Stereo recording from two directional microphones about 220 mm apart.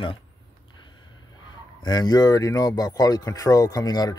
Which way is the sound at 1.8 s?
20° left (ahead or behind).